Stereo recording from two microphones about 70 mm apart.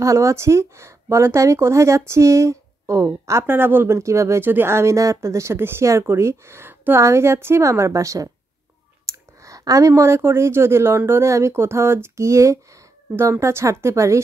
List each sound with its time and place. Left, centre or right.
0.0 s speech: right
3.9 s speech: right
4.5 s a woman's voice: right